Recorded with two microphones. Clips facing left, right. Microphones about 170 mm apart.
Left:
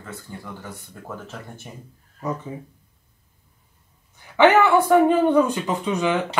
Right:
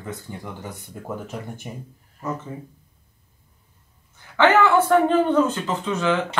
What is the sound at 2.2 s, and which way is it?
Speech, 15° left (ahead or behind).